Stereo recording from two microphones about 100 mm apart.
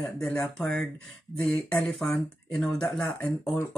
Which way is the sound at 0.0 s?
10° left (ahead or behind).